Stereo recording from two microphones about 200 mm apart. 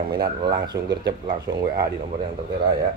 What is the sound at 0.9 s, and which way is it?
Speech, 55° right (ahead or behind).